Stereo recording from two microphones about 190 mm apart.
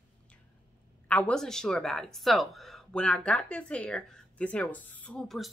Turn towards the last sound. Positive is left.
turn(degrees=0)  # may be behind; listen again after turning